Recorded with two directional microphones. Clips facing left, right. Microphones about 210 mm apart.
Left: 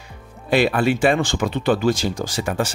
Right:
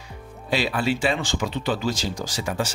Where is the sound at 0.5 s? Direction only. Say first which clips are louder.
Left 6 dB; 55° left (ahead or behind).